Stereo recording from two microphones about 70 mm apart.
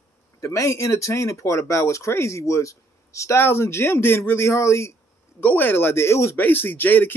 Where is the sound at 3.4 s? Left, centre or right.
Left.